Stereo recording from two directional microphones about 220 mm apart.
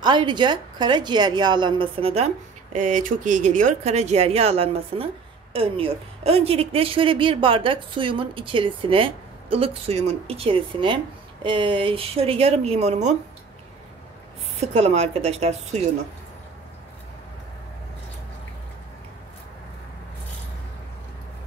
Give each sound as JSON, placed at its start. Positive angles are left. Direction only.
{"t": 0.0, "sound": "a woman's voice", "side_deg": -20}
{"t": 14.6, "sound": "a woman's voice", "side_deg": -30}